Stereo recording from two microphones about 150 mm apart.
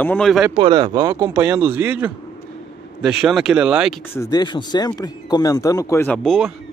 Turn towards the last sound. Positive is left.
turn(degrees=0)  # may be behind; listen again after turning